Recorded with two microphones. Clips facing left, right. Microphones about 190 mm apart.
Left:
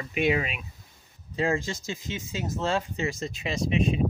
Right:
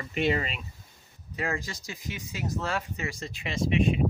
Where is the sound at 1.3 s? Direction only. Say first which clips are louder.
Left 6 dB; 25° left (ahead or behind).